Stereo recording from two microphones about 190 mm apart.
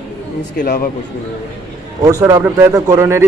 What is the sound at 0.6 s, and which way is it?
Speech, 50° left (ahead or behind).